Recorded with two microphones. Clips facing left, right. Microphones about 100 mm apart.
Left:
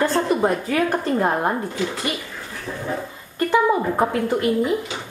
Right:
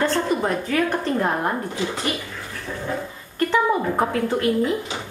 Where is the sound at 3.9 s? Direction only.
5° left (ahead or behind).